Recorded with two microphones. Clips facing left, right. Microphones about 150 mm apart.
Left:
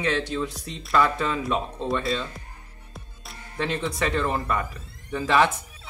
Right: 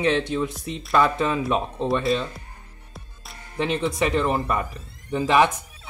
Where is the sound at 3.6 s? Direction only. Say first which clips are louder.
Right 4 dB; 15° right (ahead or behind).